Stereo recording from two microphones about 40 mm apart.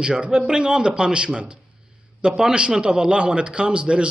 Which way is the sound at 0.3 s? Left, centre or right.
Centre.